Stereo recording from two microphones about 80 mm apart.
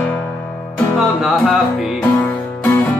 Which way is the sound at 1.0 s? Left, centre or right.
Centre.